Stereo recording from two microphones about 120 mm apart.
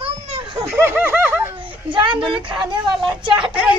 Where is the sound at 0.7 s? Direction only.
20° right (ahead or behind).